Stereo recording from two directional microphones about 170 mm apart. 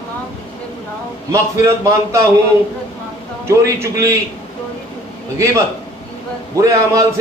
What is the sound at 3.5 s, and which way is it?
Speech, 15° right (ahead or behind).